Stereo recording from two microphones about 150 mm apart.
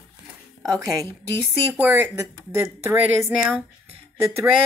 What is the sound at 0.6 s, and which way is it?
A woman's voice, 20° right (ahead or behind).